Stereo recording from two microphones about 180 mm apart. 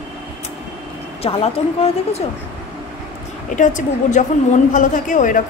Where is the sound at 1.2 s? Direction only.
35° left (ahead or behind).